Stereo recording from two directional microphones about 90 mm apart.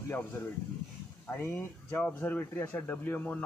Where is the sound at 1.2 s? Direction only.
25° left (ahead or behind).